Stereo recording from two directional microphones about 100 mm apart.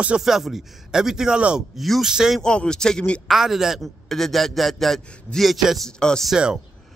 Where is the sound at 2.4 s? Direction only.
10° left (ahead or behind).